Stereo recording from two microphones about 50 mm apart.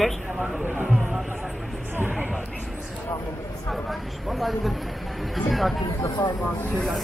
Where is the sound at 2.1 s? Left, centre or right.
Right.